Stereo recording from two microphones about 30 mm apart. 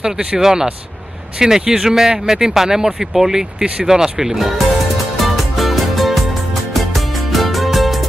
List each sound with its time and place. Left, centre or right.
0.0 s speech: right
0.4 s speech: centre
5.2 s music: centre